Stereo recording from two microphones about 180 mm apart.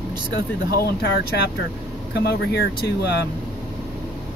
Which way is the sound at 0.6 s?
60° left (ahead or behind).